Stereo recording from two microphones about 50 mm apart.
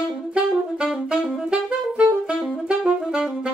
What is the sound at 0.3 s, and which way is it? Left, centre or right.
Saxophone, centre.